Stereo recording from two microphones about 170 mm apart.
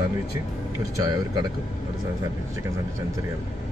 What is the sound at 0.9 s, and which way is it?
Speech, 25° right (ahead or behind).